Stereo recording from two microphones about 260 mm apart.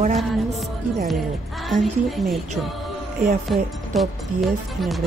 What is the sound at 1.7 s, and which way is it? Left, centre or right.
Speech, centre.